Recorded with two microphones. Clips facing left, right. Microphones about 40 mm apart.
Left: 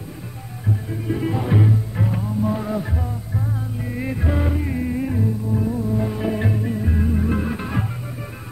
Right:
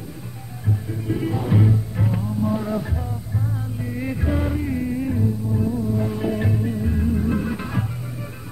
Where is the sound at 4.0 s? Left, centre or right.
Centre.